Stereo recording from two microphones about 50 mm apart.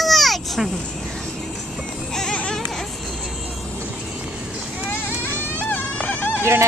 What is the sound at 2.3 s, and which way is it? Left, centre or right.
Baby cry, left.